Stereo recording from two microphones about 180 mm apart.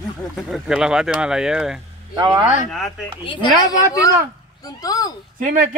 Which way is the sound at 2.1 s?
25° right (ahead or behind).